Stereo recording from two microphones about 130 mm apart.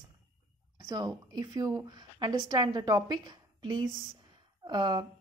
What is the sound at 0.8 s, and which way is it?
A woman's voice, 30° right (ahead or behind).